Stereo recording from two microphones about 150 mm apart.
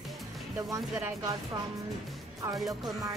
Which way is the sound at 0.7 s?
20° right (ahead or behind).